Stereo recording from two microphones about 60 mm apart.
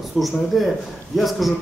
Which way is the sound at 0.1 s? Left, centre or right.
Centre.